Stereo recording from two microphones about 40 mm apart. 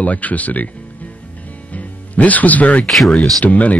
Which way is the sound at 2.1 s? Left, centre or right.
Left.